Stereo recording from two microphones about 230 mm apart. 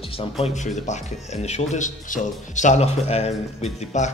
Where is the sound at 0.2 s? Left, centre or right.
Left.